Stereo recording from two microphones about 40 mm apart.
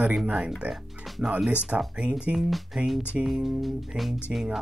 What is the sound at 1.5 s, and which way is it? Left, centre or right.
Speech, right.